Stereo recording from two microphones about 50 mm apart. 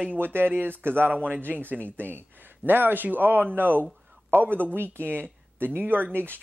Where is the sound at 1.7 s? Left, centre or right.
Right.